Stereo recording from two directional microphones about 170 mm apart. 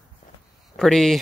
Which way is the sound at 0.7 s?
Centre (ahead or behind).